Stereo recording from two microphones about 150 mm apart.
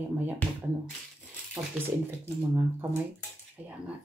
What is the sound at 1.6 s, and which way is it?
Speech, 25° right (ahead or behind).